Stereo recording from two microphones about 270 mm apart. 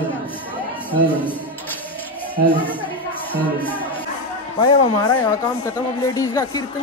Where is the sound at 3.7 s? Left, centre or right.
Centre.